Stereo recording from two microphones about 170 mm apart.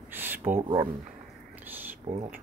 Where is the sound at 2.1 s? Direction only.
35° right (ahead or behind).